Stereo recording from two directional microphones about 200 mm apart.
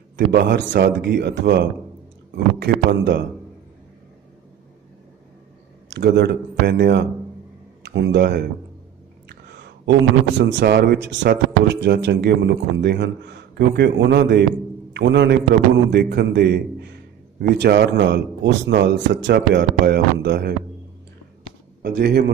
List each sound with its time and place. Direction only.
0.3 s speech: 55° right (ahead or behind)
5.9 s speech: 55° right (ahead or behind)
9.3 s a sound: 55° right (ahead or behind)
10.4 s a man's voice: 55° right (ahead or behind)
21.8 s speech: 55° right (ahead or behind)